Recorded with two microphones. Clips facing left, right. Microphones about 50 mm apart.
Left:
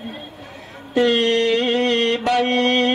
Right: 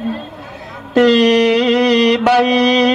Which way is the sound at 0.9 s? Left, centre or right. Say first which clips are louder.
Right 6 dB; right.